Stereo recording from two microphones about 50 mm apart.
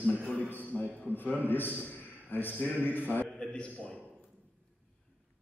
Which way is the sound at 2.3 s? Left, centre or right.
Left.